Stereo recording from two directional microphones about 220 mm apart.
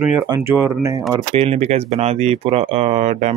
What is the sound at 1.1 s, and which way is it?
Speech, 25° right (ahead or behind).